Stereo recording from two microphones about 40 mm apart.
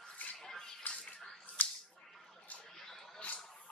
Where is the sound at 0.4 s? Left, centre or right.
Centre.